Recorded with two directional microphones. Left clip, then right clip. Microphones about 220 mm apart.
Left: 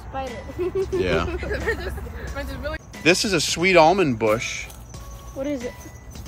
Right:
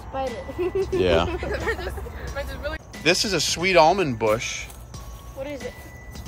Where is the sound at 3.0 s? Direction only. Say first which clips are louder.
Left 2 dB; 10° right (ahead or behind).